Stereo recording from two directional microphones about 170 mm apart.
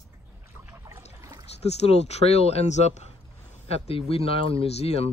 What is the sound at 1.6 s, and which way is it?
Speech, 40° left (ahead or behind).